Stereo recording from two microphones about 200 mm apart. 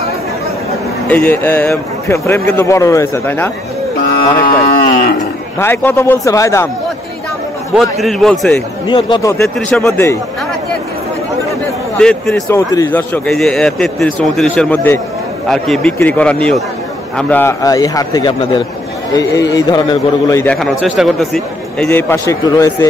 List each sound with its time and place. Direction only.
1.0 s a man's voice: 10° left (ahead or behind)
4.1 s speech: 45° left (ahead or behind)
5.6 s a man's voice: 10° left (ahead or behind)
7.7 s a man's voice: centre (ahead or behind)
8.8 s speech: 25° left (ahead or behind)
9.6 s a man's voice: 5° left (ahead or behind)
12.0 s a man's voice: 5° left (ahead or behind)
12.4 s a man's voice: 15° left (ahead or behind)
20.5 s a man's voice: centre (ahead or behind); by 22.8 s 15° left (ahead or behind)